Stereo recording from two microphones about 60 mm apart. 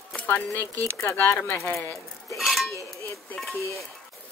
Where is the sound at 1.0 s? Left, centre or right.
Left.